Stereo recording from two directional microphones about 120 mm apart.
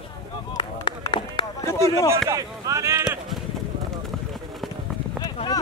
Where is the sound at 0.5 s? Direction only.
40° left (ahead or behind).